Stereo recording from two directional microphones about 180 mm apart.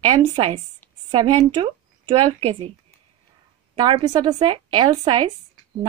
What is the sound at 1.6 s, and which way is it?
Speech, 30° right (ahead or behind).